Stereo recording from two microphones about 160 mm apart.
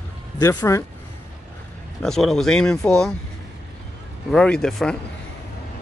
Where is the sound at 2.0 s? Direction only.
Centre (ahead or behind).